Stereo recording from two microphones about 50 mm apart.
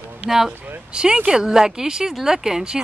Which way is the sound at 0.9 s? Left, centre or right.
Centre.